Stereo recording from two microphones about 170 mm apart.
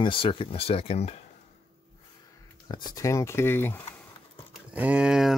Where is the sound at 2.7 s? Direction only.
25° left (ahead or behind).